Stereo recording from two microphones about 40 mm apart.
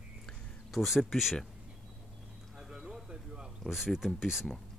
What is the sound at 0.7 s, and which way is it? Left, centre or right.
Speech, centre.